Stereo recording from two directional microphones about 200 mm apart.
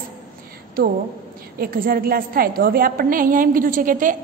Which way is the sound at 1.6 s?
45° right (ahead or behind).